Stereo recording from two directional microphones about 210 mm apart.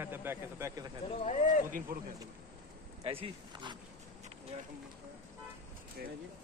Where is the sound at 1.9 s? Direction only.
40° right (ahead or behind).